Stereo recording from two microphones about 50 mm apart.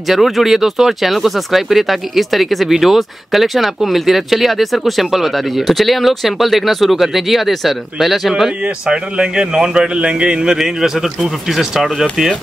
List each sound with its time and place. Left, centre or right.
0.1 s speech: centre
8.8 s a man's voice: centre